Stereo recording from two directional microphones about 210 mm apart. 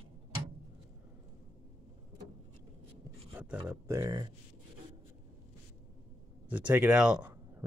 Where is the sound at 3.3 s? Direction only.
10° right (ahead or behind).